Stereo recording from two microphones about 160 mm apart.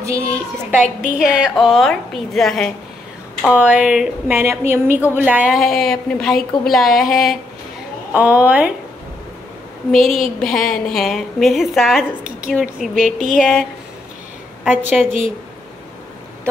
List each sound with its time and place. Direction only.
0.0 s a woman's voice: 20° right (ahead or behind)
1.0 s a woman's voice: 5° right (ahead or behind)
9.8 s a woman's voice: centre (ahead or behind)